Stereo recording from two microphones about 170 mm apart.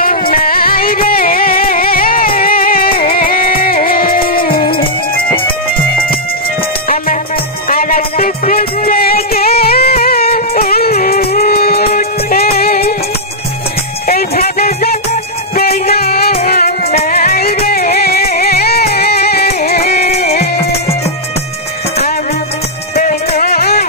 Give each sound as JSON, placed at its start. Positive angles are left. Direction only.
{"t": 0.3, "sound": "music", "side_deg": 60}
{"t": 7.7, "sound": "music", "side_deg": 60}
{"t": 14.0, "sound": "music", "side_deg": 60}
{"t": 20.0, "sound": "music", "side_deg": 40}
{"t": 22.9, "sound": "music", "side_deg": 55}